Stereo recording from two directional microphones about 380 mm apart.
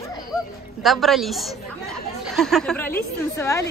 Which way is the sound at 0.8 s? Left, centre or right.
Centre.